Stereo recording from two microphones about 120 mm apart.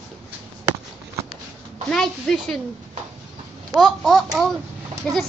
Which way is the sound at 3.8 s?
Centre (ahead or behind).